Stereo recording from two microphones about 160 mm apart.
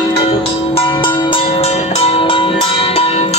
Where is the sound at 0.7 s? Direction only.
30° left (ahead or behind).